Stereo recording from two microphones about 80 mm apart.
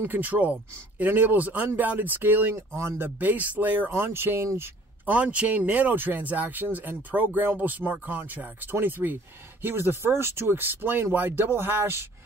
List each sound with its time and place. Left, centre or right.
0.0 s speech: right
2.5 s speech: right
3.2 s speech: right
5.0 s a man's voice: centre; by 12.1 s right